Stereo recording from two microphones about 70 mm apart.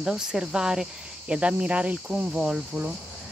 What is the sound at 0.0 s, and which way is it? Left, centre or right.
Speech, centre.